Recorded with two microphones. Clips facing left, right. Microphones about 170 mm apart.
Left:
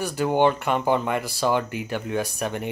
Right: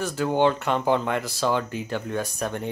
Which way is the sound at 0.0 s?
10° left (ahead or behind).